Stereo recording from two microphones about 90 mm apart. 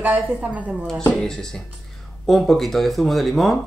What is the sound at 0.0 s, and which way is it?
Speech, 15° right (ahead or behind).